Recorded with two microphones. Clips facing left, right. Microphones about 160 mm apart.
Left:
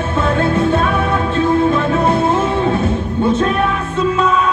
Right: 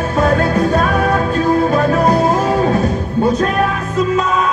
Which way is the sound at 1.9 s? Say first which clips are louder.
Right 1 dB; 25° left (ahead or behind).